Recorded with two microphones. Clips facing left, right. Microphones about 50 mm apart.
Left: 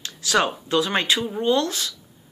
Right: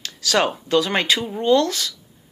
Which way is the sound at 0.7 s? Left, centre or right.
Right.